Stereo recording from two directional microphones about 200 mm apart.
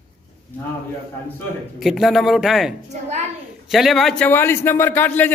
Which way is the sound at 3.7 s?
Centre (ahead or behind).